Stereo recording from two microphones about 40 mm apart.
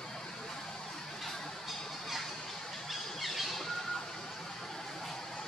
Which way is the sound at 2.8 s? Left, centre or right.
Centre.